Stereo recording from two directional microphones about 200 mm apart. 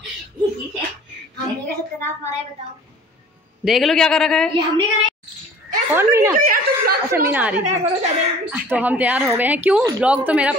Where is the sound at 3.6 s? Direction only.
Centre (ahead or behind).